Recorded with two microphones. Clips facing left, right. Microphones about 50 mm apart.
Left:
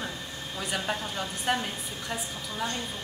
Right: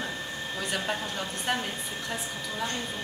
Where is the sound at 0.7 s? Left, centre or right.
Centre.